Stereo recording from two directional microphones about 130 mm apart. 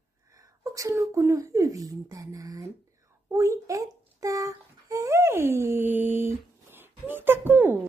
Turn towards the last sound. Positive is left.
turn(degrees=-15)  # may be behind; listen again after turning